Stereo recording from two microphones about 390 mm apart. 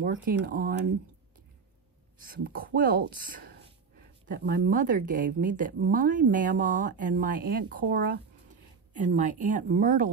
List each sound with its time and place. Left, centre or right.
0.0 s a woman's voice: right
2.1 s a woman's voice: right